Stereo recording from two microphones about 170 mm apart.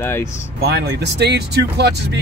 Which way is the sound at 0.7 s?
80° right.